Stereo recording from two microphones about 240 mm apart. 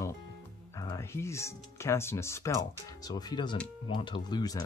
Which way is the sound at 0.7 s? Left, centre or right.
Centre.